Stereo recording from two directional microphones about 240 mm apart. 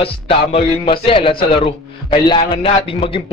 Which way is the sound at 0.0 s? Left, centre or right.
Left.